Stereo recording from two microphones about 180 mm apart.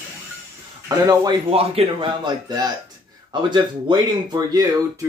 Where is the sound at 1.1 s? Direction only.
20° right (ahead or behind).